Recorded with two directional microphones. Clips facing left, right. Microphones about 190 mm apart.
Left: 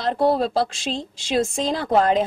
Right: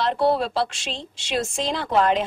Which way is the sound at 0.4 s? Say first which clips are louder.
Left 3 dB; 40° left (ahead or behind).